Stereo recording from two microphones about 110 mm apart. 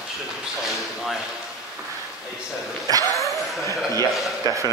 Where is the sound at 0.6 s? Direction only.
Centre (ahead or behind).